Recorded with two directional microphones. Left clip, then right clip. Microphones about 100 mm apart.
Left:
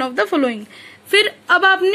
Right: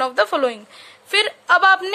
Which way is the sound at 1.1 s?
15° right (ahead or behind).